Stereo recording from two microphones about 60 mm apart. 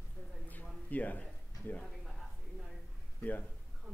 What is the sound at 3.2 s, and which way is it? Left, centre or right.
Speech, left.